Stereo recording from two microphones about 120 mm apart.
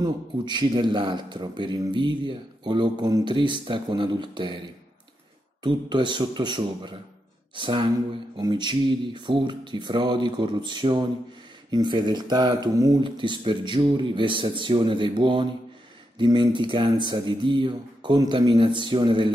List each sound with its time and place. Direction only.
0.0 s speech: 40° right (ahead or behind)
5.6 s speech: 40° right (ahead or behind)